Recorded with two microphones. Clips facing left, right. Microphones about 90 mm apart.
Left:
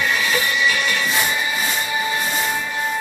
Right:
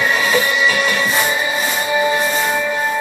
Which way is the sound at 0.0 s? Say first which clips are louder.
Right 4 dB; 40° right (ahead or behind).